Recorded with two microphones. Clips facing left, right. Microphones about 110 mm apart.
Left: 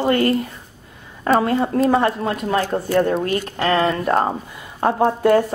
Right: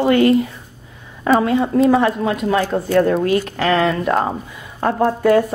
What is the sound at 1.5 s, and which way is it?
Speech, centre (ahead or behind).